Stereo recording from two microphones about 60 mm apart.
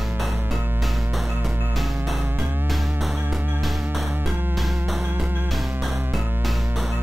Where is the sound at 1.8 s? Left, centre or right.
Centre.